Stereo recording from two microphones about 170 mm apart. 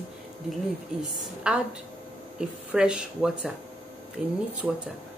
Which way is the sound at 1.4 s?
5° right (ahead or behind).